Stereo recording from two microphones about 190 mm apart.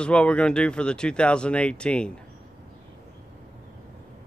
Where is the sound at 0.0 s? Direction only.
5° left (ahead or behind).